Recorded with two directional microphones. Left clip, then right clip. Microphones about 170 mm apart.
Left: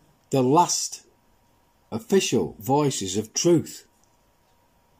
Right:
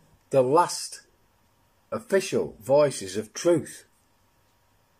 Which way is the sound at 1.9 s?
20° left (ahead or behind).